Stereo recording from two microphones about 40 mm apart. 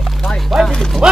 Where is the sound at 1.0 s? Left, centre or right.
Right.